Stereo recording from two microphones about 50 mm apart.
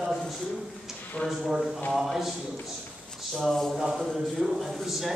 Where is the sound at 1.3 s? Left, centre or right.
Centre.